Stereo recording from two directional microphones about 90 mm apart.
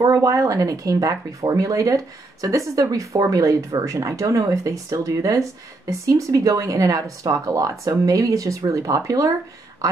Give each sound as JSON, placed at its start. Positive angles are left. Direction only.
{"t": 0.0, "sound": "speech", "side_deg": -40}